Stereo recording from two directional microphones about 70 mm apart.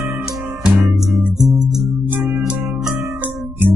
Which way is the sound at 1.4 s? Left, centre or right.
Centre.